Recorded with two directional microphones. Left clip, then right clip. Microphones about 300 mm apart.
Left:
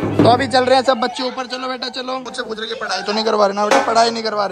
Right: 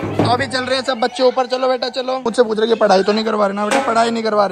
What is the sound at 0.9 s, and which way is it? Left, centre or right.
Speech, centre.